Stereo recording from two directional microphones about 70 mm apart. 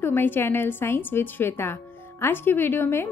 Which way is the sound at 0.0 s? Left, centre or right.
Left.